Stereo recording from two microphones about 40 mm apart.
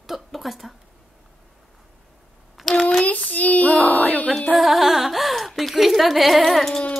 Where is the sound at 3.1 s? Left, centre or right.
Left.